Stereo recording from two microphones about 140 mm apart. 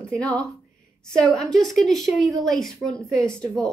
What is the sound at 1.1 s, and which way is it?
Speech, 5° left (ahead or behind).